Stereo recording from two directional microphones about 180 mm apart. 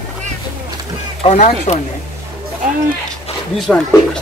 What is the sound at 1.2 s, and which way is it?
Speech, 40° left (ahead or behind).